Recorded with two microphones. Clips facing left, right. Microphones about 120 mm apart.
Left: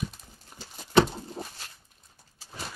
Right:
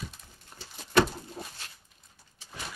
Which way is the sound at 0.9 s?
20° left (ahead or behind).